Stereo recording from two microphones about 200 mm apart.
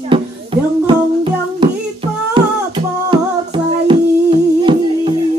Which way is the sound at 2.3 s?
25° right (ahead or behind).